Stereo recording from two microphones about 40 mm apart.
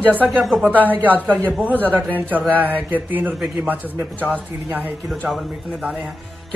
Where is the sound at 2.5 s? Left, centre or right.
Right.